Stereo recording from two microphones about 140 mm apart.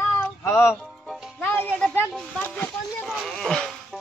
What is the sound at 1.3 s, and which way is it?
Music, 10° left (ahead or behind).